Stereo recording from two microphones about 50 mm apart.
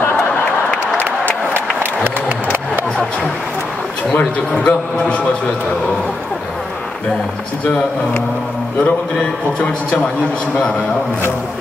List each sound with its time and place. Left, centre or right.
4.1 s a man's voice: centre
9.6 s a man's voice: centre